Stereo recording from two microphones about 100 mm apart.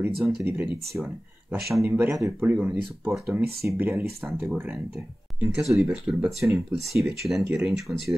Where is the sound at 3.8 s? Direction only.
20° right (ahead or behind).